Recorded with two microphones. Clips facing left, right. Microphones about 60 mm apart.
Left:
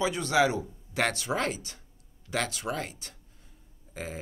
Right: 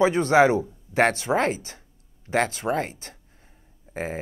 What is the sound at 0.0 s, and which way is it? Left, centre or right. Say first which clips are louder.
Speech: right 8 dB; right.